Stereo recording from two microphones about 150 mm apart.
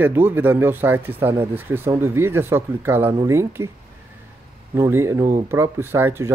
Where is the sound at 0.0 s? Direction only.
15° right (ahead or behind).